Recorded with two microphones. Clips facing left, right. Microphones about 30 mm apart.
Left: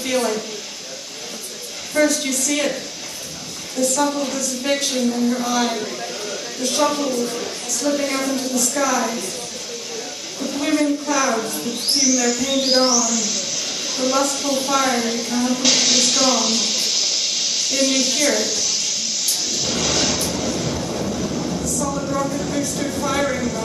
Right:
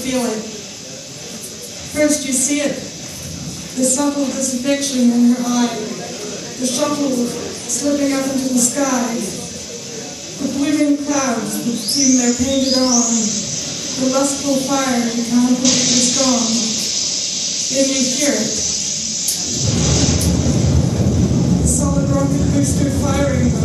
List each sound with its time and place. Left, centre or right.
0.0 s a woman's voice: centre
2.0 s a woman's voice: centre
3.8 s a woman's voice: centre
10.4 s a woman's voice: centre
19.5 s vehicle: centre
22.8 s a woman's voice: centre